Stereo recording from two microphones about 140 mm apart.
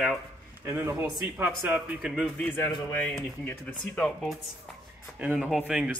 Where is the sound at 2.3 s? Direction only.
15° left (ahead or behind).